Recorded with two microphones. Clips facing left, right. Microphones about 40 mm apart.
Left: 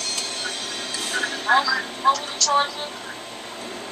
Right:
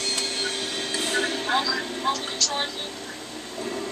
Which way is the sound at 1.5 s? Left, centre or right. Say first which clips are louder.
Left 8 dB; left.